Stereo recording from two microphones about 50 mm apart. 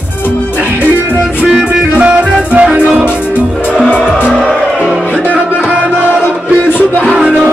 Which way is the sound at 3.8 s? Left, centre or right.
Right.